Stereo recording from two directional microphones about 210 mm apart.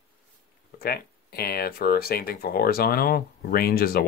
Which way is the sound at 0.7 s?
45° left (ahead or behind).